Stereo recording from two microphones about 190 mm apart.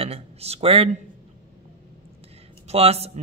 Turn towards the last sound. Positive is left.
turn(degrees=-30)  # may be behind; listen again after turning